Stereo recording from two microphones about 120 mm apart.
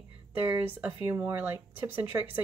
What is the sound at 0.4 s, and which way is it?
Speech, 15° right (ahead or behind).